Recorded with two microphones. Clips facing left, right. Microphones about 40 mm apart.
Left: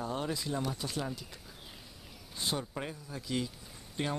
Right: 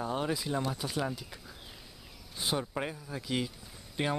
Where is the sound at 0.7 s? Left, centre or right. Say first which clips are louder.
Right 2 dB; centre.